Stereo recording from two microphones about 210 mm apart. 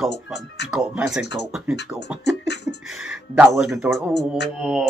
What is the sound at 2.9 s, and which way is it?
Speech, 5° right (ahead or behind).